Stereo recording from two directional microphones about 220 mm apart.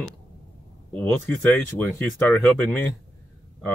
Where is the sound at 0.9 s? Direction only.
10° left (ahead or behind).